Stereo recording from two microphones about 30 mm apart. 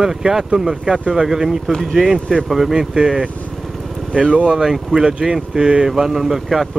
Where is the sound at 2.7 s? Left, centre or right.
Right.